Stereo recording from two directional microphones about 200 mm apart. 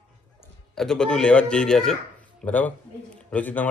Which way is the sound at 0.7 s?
Centre (ahead or behind).